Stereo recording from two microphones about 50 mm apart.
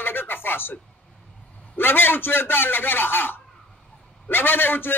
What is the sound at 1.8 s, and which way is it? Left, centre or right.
A man's voice, left.